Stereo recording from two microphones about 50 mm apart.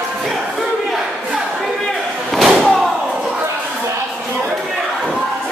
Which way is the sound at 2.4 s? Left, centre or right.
Centre.